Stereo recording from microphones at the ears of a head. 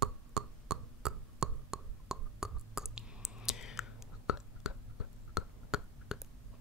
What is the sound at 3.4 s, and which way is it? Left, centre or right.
Whispering, left.